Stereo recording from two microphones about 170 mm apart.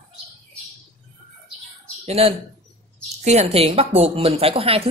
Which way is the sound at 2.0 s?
35° right (ahead or behind).